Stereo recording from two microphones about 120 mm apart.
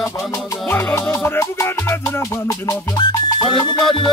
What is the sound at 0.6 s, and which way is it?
Music, 15° left (ahead or behind).